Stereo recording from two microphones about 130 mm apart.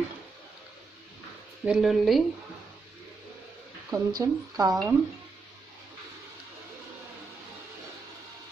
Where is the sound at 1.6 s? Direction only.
Centre (ahead or behind).